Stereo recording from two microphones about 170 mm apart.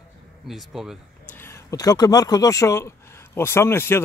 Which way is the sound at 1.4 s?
15° left (ahead or behind).